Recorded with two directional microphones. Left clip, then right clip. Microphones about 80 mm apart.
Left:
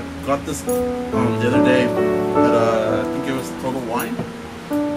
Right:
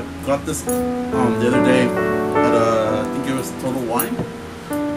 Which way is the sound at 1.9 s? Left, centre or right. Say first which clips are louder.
Left 1 dB; left.